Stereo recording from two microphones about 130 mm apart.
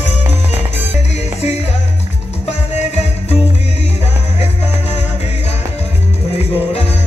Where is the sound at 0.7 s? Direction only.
55° left (ahead or behind).